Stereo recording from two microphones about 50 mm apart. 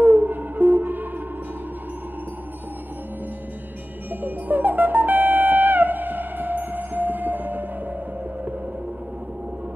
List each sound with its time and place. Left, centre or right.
0.0 s music: right
4.1 s music: right